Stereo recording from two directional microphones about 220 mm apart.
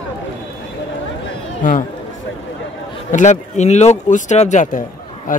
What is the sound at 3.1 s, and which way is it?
Speech, 35° left (ahead or behind).